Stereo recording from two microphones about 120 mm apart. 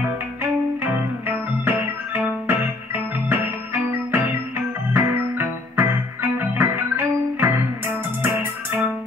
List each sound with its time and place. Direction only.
0.0 s music: 20° right (ahead or behind)